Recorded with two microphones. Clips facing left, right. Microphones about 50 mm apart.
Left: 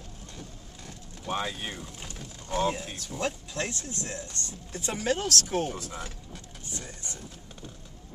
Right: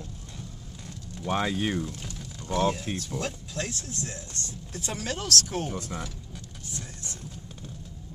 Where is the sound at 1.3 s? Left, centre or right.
Right.